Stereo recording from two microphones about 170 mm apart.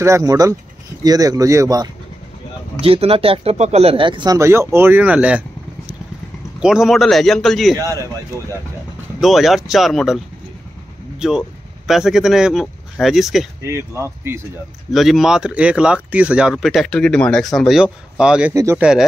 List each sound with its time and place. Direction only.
0.0 s speech: 20° right (ahead or behind)
2.8 s speech: 35° right (ahead or behind); by 5.4 s 5° right (ahead or behind)
6.6 s speech: 5° right (ahead or behind)
9.2 s speech: centre (ahead or behind)
13.7 s speech: 15° right (ahead or behind)
14.9 s speech: centre (ahead or behind)
18.5 s speech: 15° right (ahead or behind)
18.8 s speech: 5° right (ahead or behind)